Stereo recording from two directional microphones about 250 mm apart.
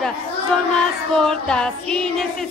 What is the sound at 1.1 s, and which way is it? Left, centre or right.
A woman's voice, centre.